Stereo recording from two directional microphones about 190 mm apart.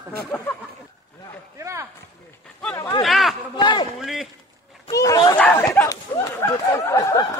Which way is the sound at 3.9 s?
Centre (ahead or behind).